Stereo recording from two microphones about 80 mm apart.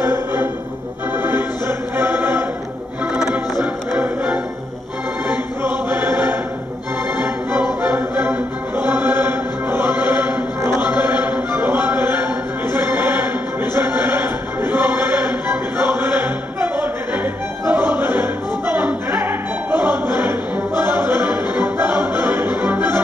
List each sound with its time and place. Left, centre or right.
0.0 s music: right
3.1 s music: centre
5.3 s choir: right
7.8 s music: right
8.7 s chant: right
13.7 s music: right